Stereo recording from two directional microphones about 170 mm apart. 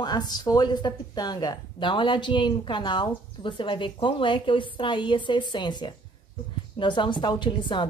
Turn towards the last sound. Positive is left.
turn(degrees=25)  # may be behind; listen again after turning